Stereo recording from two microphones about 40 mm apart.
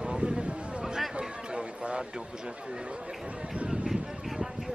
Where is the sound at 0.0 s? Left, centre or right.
Right.